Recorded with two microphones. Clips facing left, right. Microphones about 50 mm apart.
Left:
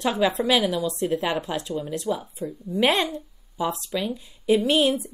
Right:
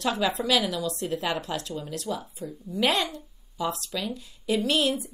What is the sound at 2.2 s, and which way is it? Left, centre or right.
A woman's voice, left.